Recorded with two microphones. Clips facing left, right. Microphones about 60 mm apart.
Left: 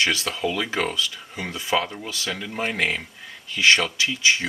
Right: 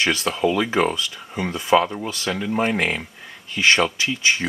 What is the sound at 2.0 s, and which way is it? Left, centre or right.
Speech, right.